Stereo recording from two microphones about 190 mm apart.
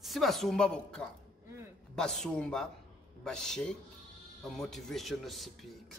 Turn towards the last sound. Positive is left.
turn(degrees=0)  # may be behind; listen again after turning